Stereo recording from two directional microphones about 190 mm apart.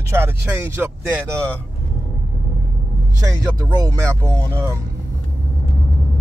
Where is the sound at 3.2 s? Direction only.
15° right (ahead or behind).